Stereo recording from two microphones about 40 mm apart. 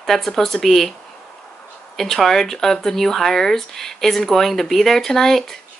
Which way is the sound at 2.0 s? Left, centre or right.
Centre.